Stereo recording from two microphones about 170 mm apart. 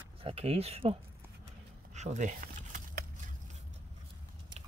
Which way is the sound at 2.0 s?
45° right (ahead or behind).